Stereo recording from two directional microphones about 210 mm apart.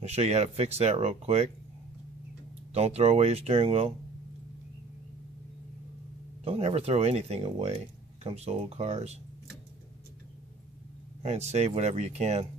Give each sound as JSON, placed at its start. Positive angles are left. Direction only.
{"t": 0.0, "sound": "speech", "side_deg": -30}
{"t": 2.7, "sound": "speech", "side_deg": -30}
{"t": 6.4, "sound": "speech", "side_deg": -30}
{"t": 11.2, "sound": "speech", "side_deg": -30}